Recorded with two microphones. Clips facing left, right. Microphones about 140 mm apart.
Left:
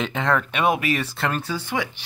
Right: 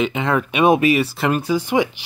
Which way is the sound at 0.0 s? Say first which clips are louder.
Right 3 dB; 5° right (ahead or behind).